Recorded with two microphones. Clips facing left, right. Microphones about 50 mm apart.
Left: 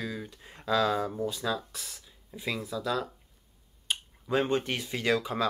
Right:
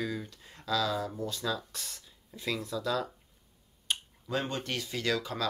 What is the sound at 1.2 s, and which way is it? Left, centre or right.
Speech, centre.